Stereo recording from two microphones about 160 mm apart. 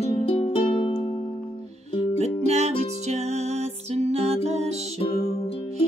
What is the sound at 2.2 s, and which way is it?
Music, 45° right (ahead or behind).